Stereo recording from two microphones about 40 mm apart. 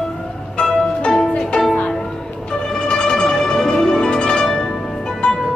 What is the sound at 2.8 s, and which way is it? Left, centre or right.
Music, centre.